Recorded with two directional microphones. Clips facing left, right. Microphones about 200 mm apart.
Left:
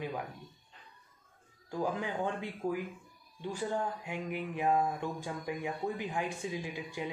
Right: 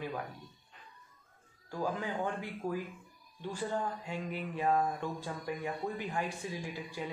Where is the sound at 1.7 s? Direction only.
15° left (ahead or behind).